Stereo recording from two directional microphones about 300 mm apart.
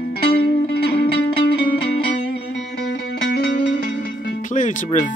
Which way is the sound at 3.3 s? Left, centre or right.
Left.